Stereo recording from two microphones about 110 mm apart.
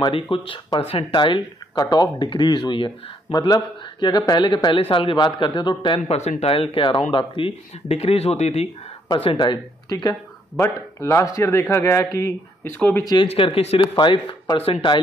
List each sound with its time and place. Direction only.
0.0 s speech: 50° left (ahead or behind)
3.3 s speech: 35° left (ahead or behind)
6.0 s speech: 75° left (ahead or behind)
9.1 s speech: 50° left (ahead or behind)
10.6 s speech: 25° left (ahead or behind)
13.0 s speech: 40° left (ahead or behind)
13.3 s speech: 65° left (ahead or behind)
13.9 s speech: 50° left (ahead or behind)